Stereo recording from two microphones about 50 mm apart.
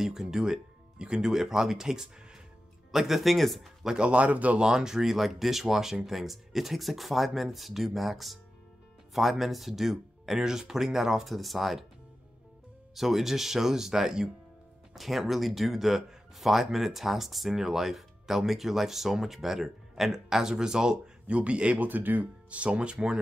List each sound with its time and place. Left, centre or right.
0.0 s speech: centre
3.9 s speech: right
4.6 s speech: centre
12.9 s speech: centre; by 21.8 s right
21.8 s speech: right; by 23.1 s centre